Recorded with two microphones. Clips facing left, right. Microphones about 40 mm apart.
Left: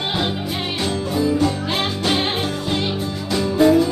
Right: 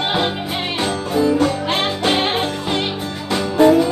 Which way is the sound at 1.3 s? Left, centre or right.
Right.